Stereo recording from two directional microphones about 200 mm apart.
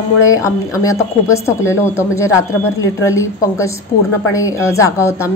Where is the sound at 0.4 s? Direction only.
15° left (ahead or behind).